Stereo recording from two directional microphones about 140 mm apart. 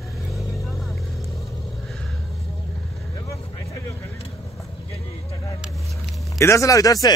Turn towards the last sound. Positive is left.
turn(degrees=25)  # may be behind; listen again after turning